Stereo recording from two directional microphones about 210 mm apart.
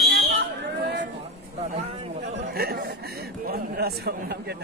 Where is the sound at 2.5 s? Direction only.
45° right (ahead or behind).